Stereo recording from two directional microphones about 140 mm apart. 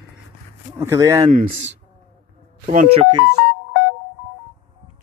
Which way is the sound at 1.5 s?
55° right (ahead or behind).